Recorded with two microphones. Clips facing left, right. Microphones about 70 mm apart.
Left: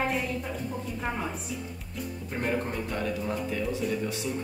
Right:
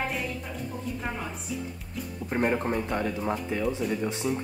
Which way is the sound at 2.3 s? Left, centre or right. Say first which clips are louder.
Right 5 dB; right.